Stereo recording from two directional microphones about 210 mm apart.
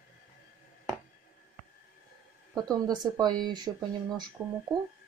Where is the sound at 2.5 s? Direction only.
20° right (ahead or behind).